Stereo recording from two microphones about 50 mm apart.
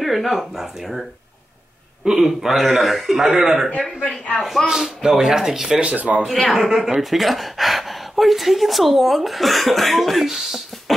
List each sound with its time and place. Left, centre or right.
0.0 s speech: centre
2.0 s speech: centre
4.4 s speech: centre
4.6 s speech: centre
5.8 s speech: right
6.2 s speech: centre